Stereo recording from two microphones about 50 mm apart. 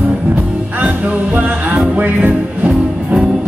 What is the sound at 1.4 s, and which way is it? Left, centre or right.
Music, right.